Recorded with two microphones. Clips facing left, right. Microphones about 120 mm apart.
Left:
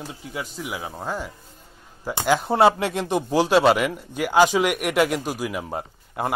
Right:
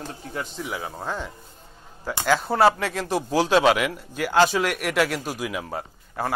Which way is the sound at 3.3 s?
10° left (ahead or behind).